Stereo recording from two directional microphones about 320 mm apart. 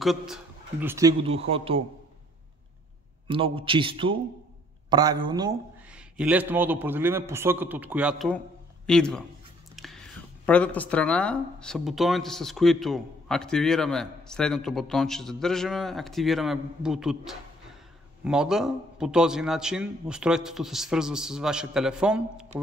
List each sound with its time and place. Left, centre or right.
0.0 s a man's voice: centre
3.3 s a man's voice: centre